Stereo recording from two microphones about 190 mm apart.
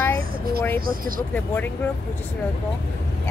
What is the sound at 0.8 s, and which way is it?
Speech, 50° right (ahead or behind).